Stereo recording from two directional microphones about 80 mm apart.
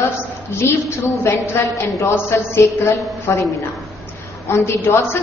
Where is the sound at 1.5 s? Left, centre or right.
Left.